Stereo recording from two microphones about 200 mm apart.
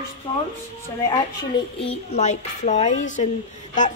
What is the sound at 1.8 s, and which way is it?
A woman's voice, 30° left (ahead or behind).